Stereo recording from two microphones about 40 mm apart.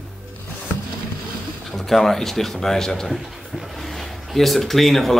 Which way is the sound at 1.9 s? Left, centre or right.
Centre.